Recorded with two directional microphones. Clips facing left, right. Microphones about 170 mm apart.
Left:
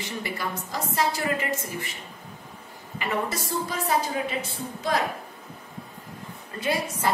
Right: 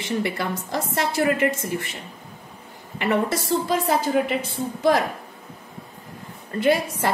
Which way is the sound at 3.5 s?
70° right (ahead or behind).